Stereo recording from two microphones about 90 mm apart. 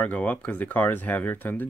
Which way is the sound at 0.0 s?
15° left (ahead or behind).